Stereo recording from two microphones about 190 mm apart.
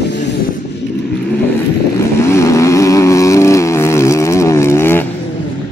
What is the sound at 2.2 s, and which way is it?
Vehicle, 15° left (ahead or behind).